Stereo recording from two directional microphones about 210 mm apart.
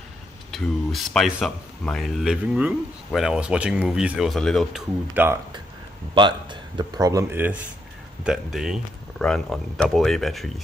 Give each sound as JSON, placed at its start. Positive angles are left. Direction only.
{"t": 0.5, "sound": "speech", "side_deg": 0}
{"t": 5.1, "sound": "speech", "side_deg": -10}
{"t": 6.1, "sound": "speech", "side_deg": -20}